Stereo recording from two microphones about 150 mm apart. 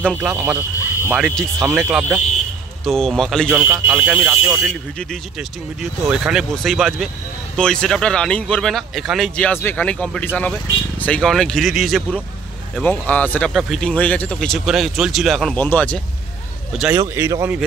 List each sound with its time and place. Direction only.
0.2 s speech: 10° right (ahead or behind)
1.1 s speech: centre (ahead or behind)
3.6 s speech: 15° right (ahead or behind)
4.0 s speech: 5° right (ahead or behind)
9.5 s speech: 15° left (ahead or behind)
12.8 s speech: 10° left (ahead or behind)
13.5 s speech: centre (ahead or behind)
15.5 s speech: 10° left (ahead or behind)
17.1 s speech: 20° right (ahead or behind)